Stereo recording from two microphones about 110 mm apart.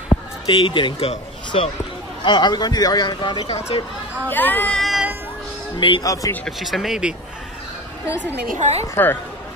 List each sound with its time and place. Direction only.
0.1 s speech: 50° left (ahead or behind)
2.2 s speech: 45° left (ahead or behind)
4.3 s speech: 15° left (ahead or behind)
4.7 s music: centre (ahead or behind)
5.8 s speech: 45° left (ahead or behind)
6.2 s speech: 30° left (ahead or behind)
6.6 s speech: centre (ahead or behind)
8.5 s a woman's voice: 80° right
8.9 s speech: 20° left (ahead or behind)